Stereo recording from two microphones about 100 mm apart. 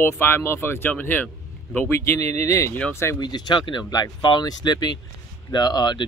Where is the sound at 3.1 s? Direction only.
45° left (ahead or behind).